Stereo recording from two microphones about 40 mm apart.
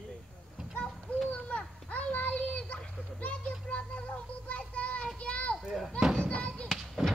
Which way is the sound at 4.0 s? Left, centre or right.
Left.